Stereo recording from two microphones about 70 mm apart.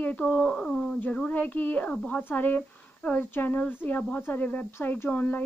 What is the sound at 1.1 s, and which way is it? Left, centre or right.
Speech, centre.